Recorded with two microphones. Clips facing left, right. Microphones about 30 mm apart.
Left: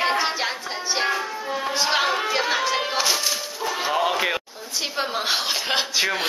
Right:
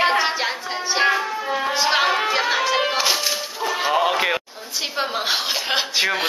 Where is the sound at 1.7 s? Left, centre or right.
Centre.